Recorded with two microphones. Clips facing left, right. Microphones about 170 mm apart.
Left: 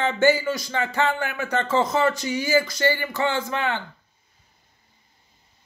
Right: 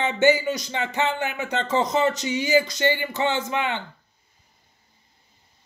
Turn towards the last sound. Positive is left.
turn(degrees=-20)  # may be behind; listen again after turning